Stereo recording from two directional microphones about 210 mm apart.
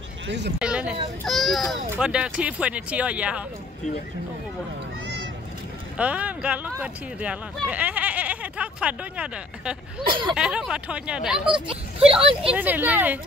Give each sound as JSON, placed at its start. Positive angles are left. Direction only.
{"t": 0.6, "sound": "speech", "side_deg": -5}
{"t": 5.9, "sound": "speech", "side_deg": -5}
{"t": 11.6, "sound": "speech", "side_deg": -25}
{"t": 12.2, "sound": "speech", "side_deg": -5}